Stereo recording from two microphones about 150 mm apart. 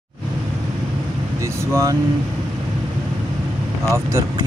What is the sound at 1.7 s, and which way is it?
Speech, 20° right (ahead or behind).